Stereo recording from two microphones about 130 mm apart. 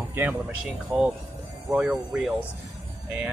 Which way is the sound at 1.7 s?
10° right (ahead or behind).